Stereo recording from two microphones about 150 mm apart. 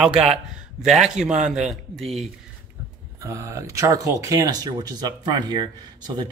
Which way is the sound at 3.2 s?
20° right (ahead or behind).